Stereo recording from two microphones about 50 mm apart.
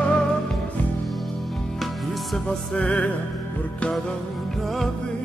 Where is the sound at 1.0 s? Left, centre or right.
Centre.